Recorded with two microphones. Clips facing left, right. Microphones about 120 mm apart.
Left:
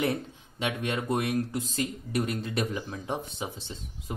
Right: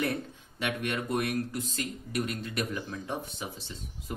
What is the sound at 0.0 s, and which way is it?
Speech, 20° left (ahead or behind).